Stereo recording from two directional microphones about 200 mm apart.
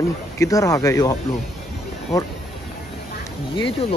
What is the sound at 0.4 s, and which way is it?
Speech, 15° left (ahead or behind).